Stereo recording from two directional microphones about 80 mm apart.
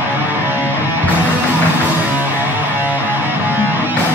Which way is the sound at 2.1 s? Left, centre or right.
Right.